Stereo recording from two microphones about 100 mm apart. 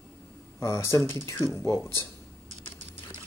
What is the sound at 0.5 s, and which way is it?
Speech, 25° left (ahead or behind).